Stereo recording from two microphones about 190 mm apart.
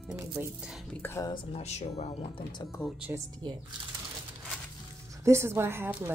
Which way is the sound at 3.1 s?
20° right (ahead or behind).